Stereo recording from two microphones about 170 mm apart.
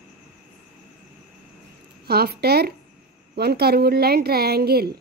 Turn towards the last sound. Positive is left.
turn(degrees=-65)  # may be behind; listen again after turning